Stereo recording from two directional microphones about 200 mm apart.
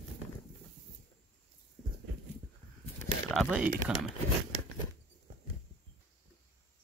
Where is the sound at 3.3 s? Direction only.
5° right (ahead or behind).